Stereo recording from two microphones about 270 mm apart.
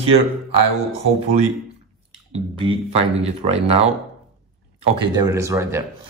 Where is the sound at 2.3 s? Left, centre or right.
Right.